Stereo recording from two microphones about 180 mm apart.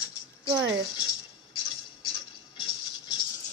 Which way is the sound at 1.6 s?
25° left (ahead or behind).